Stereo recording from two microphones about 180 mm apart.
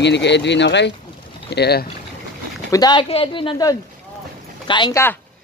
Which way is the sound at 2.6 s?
20° left (ahead or behind).